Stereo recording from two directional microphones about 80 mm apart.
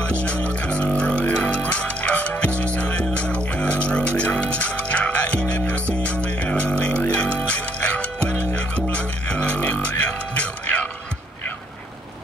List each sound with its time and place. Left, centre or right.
0.5 s music: centre
8.9 s music: centre